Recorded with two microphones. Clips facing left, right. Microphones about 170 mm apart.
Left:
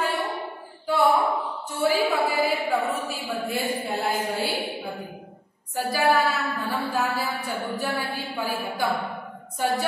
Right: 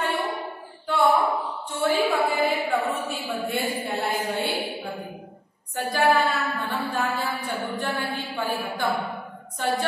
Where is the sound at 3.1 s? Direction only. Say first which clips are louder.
Right 1 dB; centre (ahead or behind).